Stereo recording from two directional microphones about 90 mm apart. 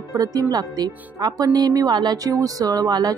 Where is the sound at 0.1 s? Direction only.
40° right (ahead or behind).